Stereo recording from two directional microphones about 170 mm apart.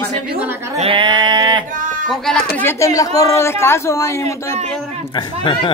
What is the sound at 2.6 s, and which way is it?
Speech, 15° left (ahead or behind).